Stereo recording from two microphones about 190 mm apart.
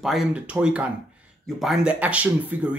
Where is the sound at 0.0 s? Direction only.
Centre (ahead or behind).